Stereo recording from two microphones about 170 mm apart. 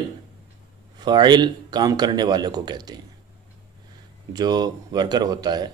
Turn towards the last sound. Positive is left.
turn(degrees=-25)  # may be behind; listen again after turning